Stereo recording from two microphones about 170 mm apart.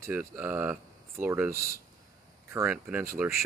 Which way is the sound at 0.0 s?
15° right (ahead or behind).